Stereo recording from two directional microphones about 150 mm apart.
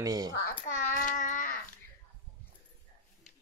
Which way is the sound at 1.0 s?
60° left (ahead or behind).